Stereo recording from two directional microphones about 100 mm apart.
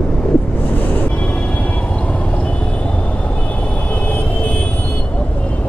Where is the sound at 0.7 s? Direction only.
15° left (ahead or behind).